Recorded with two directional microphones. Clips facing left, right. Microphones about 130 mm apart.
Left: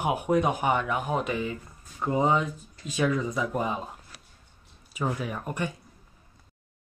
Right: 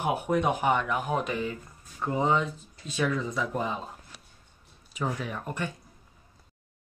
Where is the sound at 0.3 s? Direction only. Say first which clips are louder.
Left 1 dB; 5° left (ahead or behind).